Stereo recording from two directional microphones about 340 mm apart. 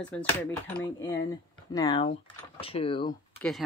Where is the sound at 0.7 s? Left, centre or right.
Centre.